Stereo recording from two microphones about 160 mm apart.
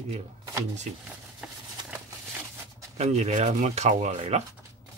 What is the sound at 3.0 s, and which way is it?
Speech, 45° right (ahead or behind).